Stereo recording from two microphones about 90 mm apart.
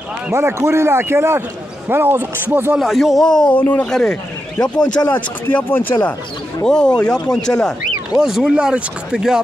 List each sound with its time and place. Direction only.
0.3 s speech: 30° right (ahead or behind)
2.8 s speech: centre (ahead or behind)
3.5 s speech: 20° left (ahead or behind)
3.8 s speech: 5° left (ahead or behind); by 6.1 s 25° left (ahead or behind)
6.6 s speech: 10° left (ahead or behind)
8.2 s speech: 5° right (ahead or behind)